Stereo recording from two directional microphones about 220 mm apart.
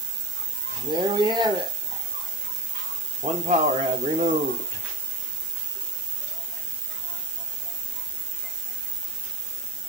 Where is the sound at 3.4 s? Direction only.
35° right (ahead or behind).